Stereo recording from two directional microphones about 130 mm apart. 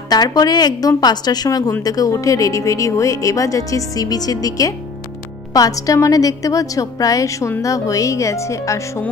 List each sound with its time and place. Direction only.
0.1 s a woman's voice: 30° left (ahead or behind)